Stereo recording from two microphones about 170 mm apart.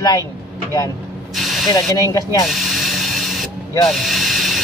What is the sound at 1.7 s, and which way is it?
Speech, 20° left (ahead or behind).